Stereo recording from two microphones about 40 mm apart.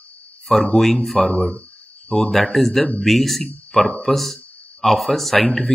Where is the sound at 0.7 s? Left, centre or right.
Centre.